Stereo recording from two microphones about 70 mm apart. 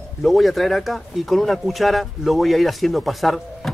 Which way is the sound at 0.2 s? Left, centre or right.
Centre.